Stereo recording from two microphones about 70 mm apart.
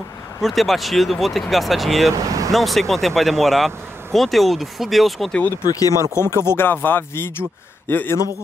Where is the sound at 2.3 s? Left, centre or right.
Right.